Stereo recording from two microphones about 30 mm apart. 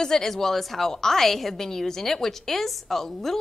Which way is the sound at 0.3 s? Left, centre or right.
Centre.